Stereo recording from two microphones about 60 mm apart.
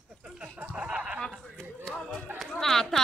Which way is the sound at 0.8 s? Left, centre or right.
Right.